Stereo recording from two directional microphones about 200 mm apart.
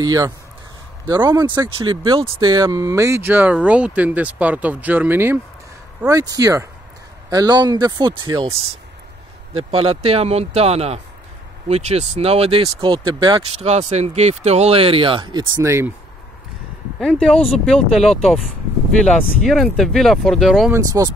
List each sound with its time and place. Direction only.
0.0 s speech: 20° right (ahead or behind)
17.0 s speech: 5° left (ahead or behind)
20.7 s speech: 15° right (ahead or behind)